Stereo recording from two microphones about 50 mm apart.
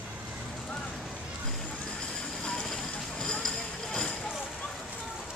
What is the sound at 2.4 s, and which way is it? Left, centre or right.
Vehicle, centre.